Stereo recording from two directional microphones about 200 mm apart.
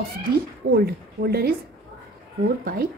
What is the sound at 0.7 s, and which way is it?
Speech, 50° right (ahead or behind).